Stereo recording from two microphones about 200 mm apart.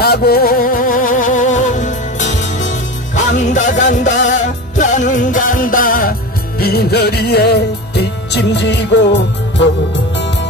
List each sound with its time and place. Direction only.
0.0 s music: 50° left (ahead or behind)